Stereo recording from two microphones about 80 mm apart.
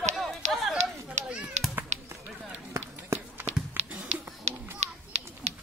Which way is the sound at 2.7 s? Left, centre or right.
Right.